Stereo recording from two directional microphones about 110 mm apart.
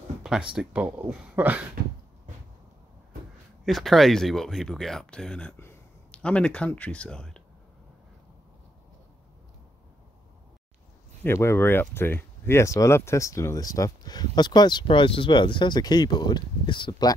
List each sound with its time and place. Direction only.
0.5 s speech: 10° right (ahead or behind)
3.6 s speech: centre (ahead or behind)
11.2 s speech: 25° left (ahead or behind); by 17.1 s 45° left (ahead or behind)